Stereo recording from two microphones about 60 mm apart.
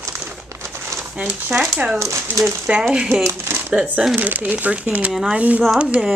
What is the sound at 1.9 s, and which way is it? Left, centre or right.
Speech, right.